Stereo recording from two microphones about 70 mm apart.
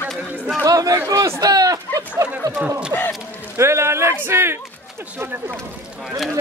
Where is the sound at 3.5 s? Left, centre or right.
Right.